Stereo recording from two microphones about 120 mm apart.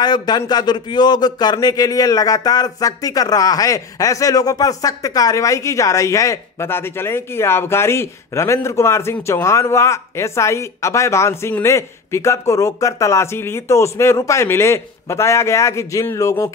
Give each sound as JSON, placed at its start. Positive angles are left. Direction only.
{"t": 0.0, "sound": "a man's voice", "side_deg": 35}